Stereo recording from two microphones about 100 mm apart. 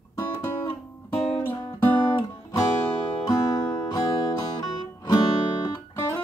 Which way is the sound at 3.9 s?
35° left (ahead or behind).